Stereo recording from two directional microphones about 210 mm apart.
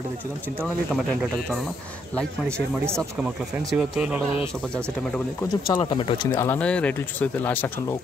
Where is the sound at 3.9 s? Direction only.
5° right (ahead or behind).